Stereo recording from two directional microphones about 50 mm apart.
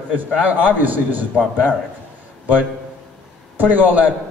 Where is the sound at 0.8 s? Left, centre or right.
Right.